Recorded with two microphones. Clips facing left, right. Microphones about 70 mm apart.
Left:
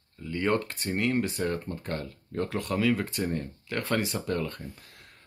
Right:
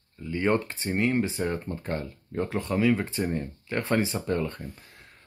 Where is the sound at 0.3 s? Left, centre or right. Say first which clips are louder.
Right 2 dB; right.